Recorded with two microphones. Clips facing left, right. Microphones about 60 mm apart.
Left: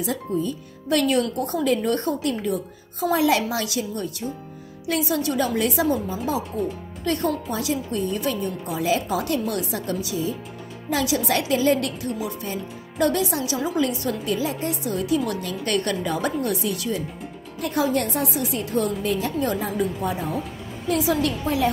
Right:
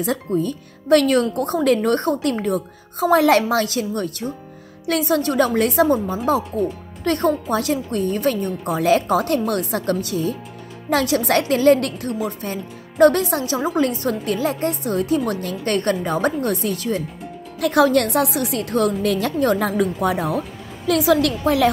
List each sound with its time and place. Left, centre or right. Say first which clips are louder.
0.0 s a woman's voice: right 4 dB; right
17.6 s speech: right 7 dB; right